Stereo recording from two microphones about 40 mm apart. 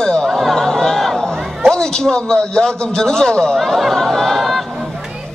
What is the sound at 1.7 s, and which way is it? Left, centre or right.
A man's voice, centre.